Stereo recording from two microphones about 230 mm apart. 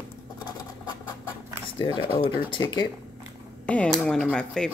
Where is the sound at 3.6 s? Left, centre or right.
Centre.